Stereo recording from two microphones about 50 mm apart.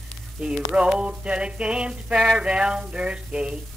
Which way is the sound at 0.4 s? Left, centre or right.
Centre.